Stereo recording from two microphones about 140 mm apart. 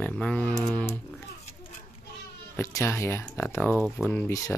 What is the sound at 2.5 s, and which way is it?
Speech, 20° left (ahead or behind).